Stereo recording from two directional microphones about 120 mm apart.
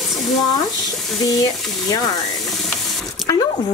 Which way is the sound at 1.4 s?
30° left (ahead or behind).